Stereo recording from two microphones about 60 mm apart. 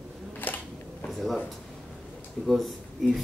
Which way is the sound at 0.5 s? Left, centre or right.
Left.